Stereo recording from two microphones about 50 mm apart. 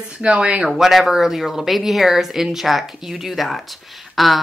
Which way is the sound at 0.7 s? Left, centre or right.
Centre.